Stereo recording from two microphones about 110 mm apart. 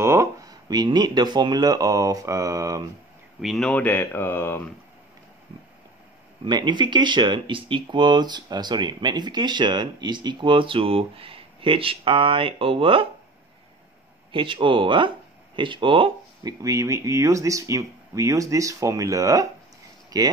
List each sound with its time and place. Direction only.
0.0 s speech: 25° right (ahead or behind)
3.3 s speech: centre (ahead or behind)
3.8 s speech: 15° left (ahead or behind)
6.4 s speech: 45° right (ahead or behind)
14.3 s speech: 50° right (ahead or behind)
16.6 s speech: 30° right (ahead or behind)